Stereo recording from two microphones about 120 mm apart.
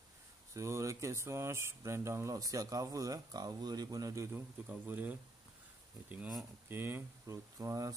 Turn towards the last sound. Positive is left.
turn(degrees=-30)  # may be behind; listen again after turning